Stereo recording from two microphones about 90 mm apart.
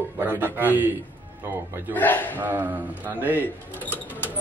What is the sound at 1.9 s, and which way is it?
Speech, 20° left (ahead or behind).